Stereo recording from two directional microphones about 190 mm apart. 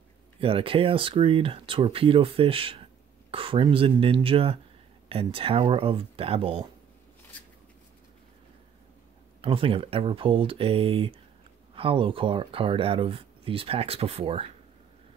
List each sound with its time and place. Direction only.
0.4 s speech: 30° right (ahead or behind)
9.4 s speech: 30° right (ahead or behind)